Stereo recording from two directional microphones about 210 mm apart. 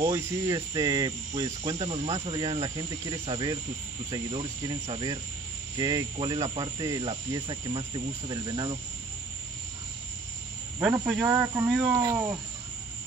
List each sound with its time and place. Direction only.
0.0 s cricket: 15° right (ahead or behind)
4.1 s speech: 20° right (ahead or behind)
10.8 s cricket: 5° right (ahead or behind)